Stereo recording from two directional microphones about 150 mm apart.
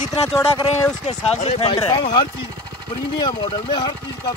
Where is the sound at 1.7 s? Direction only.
30° left (ahead or behind).